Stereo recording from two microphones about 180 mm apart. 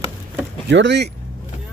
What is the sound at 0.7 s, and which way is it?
Speech, 80° right.